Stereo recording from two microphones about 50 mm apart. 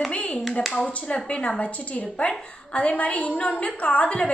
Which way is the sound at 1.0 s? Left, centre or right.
Left.